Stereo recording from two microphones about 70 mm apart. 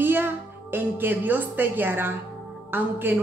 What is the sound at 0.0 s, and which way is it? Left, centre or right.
A woman's voice, right.